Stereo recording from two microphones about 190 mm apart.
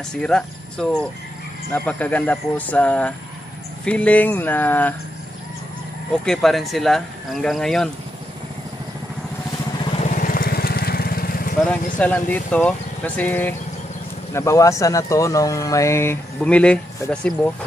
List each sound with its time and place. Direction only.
0.1 s speech: 5° left (ahead or behind)
6.2 s speech: centre (ahead or behind)
9.8 s vehicle: 30° left (ahead or behind)
10.1 s vehicle: 50° left (ahead or behind)
11.6 s speech: 5° left (ahead or behind)